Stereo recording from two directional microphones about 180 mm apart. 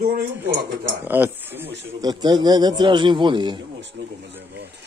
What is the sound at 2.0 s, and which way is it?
A man's voice, 20° right (ahead or behind).